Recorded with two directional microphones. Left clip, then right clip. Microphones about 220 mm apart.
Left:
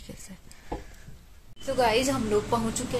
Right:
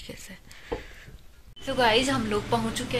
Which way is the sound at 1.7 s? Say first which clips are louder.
Right 1 dB; 5° left (ahead or behind).